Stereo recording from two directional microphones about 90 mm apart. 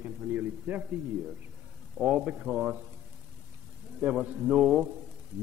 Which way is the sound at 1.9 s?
10° right (ahead or behind).